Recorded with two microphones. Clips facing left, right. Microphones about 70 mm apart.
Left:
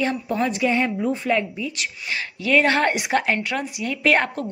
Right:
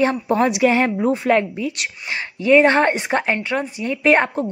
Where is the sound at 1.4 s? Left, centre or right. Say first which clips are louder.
Right 4 dB; right.